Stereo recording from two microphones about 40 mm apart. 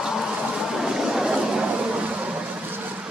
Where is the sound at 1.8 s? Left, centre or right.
Right.